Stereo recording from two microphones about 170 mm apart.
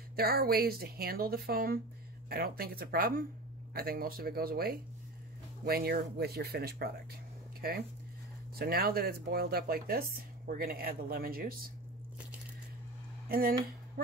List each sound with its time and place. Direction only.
0.1 s speech: 65° right (ahead or behind)
13.3 s speech: 55° right (ahead or behind)